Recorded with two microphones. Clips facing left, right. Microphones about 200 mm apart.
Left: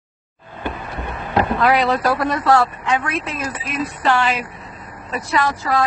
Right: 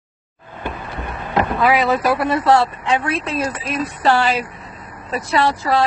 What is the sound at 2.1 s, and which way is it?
Speech, 25° right (ahead or behind).